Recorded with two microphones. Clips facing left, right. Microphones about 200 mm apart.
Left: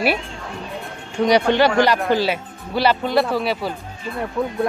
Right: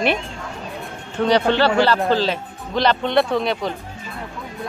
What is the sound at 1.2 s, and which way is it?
Speech, 15° left (ahead or behind).